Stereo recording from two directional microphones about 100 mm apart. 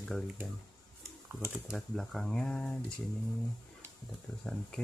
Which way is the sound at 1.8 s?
5° left (ahead or behind).